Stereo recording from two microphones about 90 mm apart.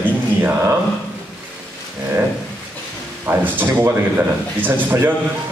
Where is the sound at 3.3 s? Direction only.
25° right (ahead or behind).